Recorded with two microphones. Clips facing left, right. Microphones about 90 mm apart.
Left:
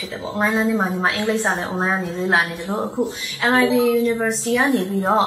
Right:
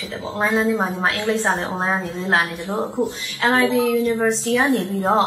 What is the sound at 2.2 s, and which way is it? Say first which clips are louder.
A woman's voice: left 1 dB; 15° left (ahead or behind).